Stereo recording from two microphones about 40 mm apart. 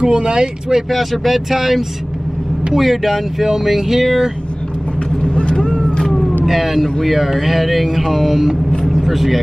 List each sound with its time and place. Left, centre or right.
0.0 s speech: right
0.8 s speech: centre
5.2 s vehicle: left
6.4 s a sound: centre
7.0 s speech: centre